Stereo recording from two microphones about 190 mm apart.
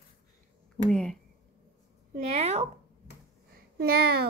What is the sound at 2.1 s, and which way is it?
Speech, 35° right (ahead or behind).